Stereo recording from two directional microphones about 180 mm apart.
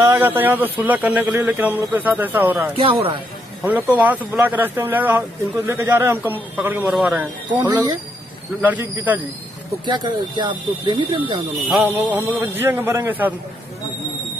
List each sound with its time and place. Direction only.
0.0 s speech: 10° right (ahead or behind)
2.7 s speech: 30° right (ahead or behind)
3.6 s speech: 10° right (ahead or behind)
7.5 s speech: 20° right (ahead or behind)
8.5 s speech: 10° right (ahead or behind)
9.8 s speech: 25° right (ahead or behind)
11.7 s speech: 10° right (ahead or behind)